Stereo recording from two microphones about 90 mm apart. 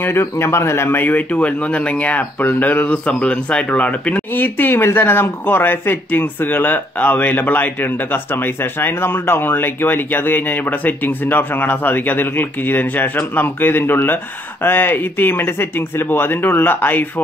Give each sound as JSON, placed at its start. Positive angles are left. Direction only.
{"t": 0.0, "sound": "speech", "side_deg": 25}